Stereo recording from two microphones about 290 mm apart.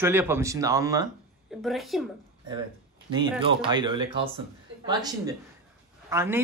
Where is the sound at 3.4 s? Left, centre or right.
Centre.